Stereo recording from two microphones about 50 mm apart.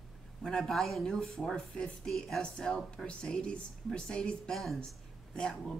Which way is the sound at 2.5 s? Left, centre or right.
Centre.